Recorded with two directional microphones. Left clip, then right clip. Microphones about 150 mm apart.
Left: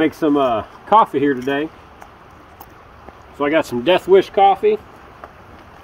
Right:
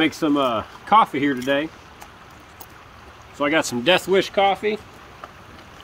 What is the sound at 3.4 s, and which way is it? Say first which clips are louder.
Speech: left 3 dB; 25° right (ahead or behind).